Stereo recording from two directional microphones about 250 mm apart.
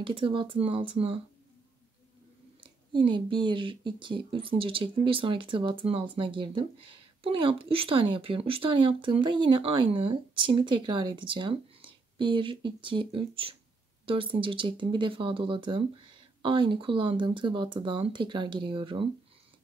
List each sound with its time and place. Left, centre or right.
0.0 s speech: centre
2.9 s speech: centre